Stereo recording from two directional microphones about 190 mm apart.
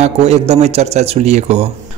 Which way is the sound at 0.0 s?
35° right (ahead or behind).